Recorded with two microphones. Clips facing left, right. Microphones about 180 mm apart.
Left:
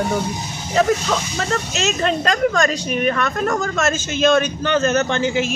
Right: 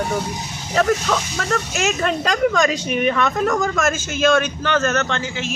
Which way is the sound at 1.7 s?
10° right (ahead or behind).